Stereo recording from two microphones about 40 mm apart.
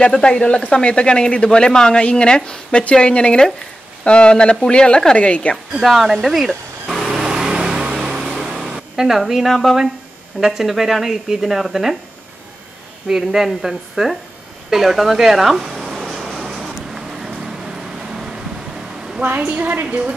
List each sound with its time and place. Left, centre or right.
0.0 s speech: left
5.8 s a woman's voice: centre
7.2 s vehicle: centre
8.2 s a sound: centre
9.2 s a woman's voice: centre
13.1 s speech: centre
16.6 s vehicle: centre
19.2 s a woman's voice: right